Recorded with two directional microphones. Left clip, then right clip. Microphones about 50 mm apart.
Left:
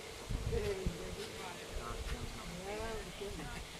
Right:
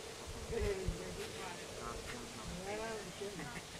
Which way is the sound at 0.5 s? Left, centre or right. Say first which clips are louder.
Left 1 dB; left.